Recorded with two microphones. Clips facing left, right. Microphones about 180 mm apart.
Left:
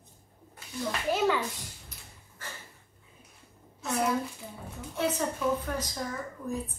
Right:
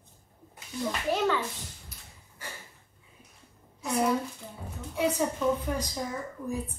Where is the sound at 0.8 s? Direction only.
5° left (ahead or behind).